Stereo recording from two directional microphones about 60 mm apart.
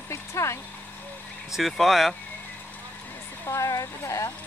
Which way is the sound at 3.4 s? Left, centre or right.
Left.